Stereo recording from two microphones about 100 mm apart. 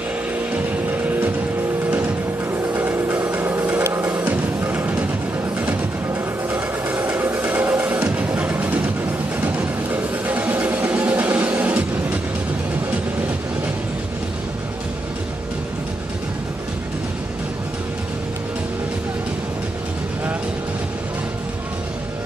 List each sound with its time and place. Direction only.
2.5 s vehicle: 20° right (ahead or behind)
4.1 s music: 15° right (ahead or behind)
6.5 s music: 15° right (ahead or behind)